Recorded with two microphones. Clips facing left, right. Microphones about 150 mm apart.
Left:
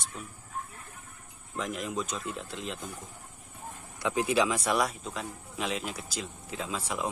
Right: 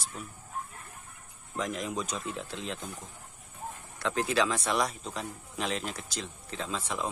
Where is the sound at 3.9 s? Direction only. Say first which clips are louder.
Left 2 dB; 15° left (ahead or behind).